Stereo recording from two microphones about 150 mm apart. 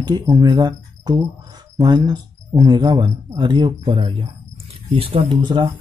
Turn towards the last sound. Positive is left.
turn(degrees=-30)  # may be behind; listen again after turning